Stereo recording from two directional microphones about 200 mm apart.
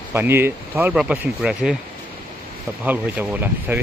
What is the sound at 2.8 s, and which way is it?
Speech, 10° right (ahead or behind).